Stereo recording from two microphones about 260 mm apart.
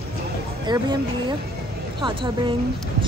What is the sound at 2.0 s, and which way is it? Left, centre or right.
Speech, centre.